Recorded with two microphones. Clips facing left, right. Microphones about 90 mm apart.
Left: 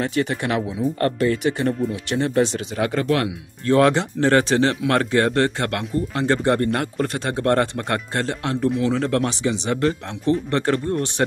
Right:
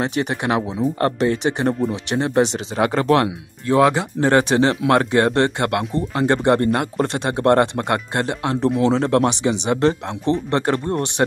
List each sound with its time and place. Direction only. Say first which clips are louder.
0.0 s speech: right 1 dB; 20° right (ahead or behind)
3.6 s speech: right 1 dB; 10° right (ahead or behind)